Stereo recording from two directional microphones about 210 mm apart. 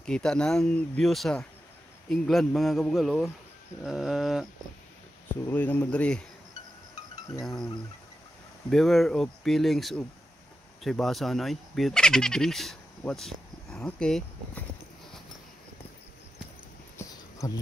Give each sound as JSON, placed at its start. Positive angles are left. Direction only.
{"t": 0.0, "sound": "speech", "side_deg": 5}
{"t": 5.4, "sound": "speech", "side_deg": 10}
{"t": 8.6, "sound": "speech", "side_deg": 0}
{"t": 17.0, "sound": "a sound", "side_deg": 10}
{"t": 17.4, "sound": "speech", "side_deg": 15}